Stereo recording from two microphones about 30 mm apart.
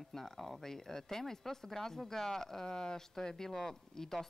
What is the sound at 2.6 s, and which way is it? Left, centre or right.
Speech, left.